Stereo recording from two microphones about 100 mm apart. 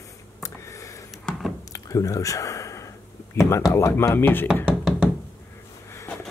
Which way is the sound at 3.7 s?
30° left (ahead or behind).